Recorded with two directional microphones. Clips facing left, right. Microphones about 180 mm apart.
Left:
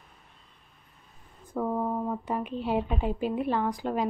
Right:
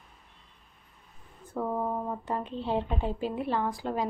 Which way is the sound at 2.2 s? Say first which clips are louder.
Left 2 dB; 15° left (ahead or behind).